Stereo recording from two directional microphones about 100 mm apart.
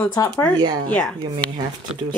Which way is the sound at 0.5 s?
45° right (ahead or behind).